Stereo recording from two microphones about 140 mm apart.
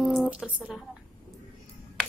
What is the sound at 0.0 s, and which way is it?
Squish, centre (ahead or behind).